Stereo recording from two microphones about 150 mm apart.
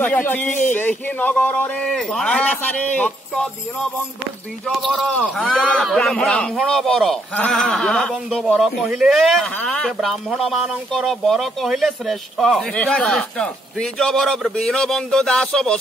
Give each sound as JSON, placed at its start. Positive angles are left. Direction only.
{"t": 0.0, "sound": "a man's voice", "side_deg": 10}
{"t": 4.6, "sound": "speech", "side_deg": 0}